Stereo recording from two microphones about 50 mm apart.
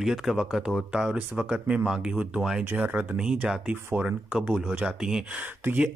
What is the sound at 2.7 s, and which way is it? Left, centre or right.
Speech, right.